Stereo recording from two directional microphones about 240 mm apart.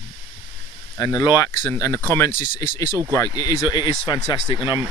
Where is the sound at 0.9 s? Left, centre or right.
Centre.